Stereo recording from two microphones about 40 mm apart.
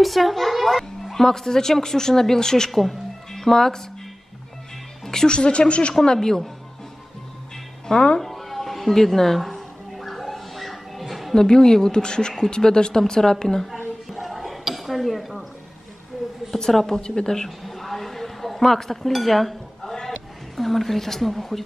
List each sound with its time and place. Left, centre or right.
0.0 s a child's voice: centre
5.0 s speech: centre
7.9 s speech: left
8.2 s a sound: centre
11.3 s a child's voice: centre
14.1 s a sound: centre
16.7 s a child's voice: centre
17.6 s a sound: centre
20.5 s a woman's voice: centre